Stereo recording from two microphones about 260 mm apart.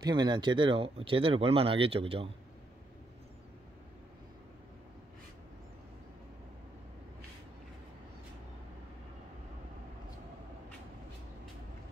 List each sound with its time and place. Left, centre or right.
0.0 s speech: centre